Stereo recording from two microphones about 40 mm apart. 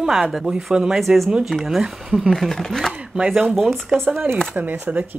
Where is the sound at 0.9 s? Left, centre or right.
Centre.